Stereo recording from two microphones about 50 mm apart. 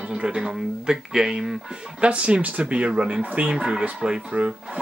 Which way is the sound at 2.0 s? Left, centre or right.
Right.